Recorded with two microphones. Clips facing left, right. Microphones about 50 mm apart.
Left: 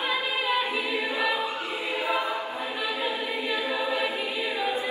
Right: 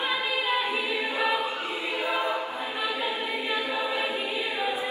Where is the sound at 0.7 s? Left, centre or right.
Right.